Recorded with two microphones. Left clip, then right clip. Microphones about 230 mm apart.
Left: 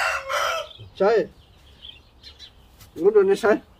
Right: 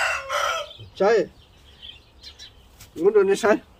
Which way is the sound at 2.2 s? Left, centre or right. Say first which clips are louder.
Right 2 dB; right.